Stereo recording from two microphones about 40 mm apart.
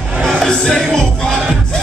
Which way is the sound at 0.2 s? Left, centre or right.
Centre.